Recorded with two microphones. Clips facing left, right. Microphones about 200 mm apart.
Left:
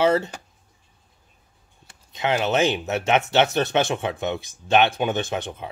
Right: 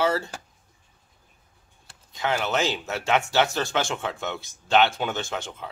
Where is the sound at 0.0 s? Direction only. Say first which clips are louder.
Left 5 dB; 20° left (ahead or behind).